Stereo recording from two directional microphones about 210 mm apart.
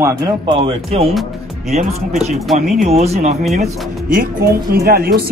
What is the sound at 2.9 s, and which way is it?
Speech, 30° right (ahead or behind).